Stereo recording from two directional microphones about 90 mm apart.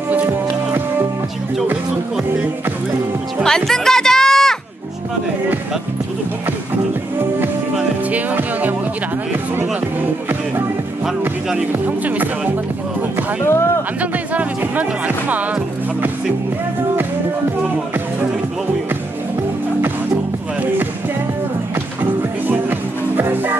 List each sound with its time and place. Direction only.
3.4 s music: 5° left (ahead or behind)
8.1 s music: 15° right (ahead or behind)
11.1 s speech: 5° right (ahead or behind)
11.7 s speech: 20° right (ahead or behind)
13.4 s a sound: 30° left (ahead or behind)
14.1 s music: 15° right (ahead or behind)
22.5 s music: 20° right (ahead or behind)